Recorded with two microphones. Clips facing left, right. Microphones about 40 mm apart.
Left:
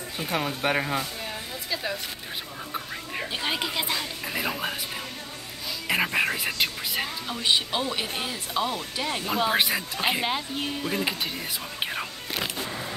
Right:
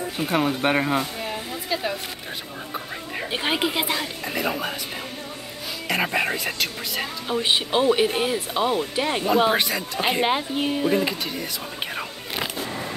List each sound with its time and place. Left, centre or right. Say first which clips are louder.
0.2 s a sound: right 5 dB; centre
3.3 s speech: right 6 dB; right
4.3 s speech: right 3 dB; centre
6.1 s speech: right 1 dB; centre
7.3 s speech: right 4 dB; right
9.6 s speech: even; centre
9.9 s speech: right 4 dB; centre
10.2 s speech: right 6 dB; centre